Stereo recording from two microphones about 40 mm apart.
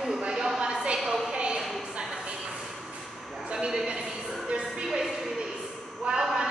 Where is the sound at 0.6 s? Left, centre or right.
Right.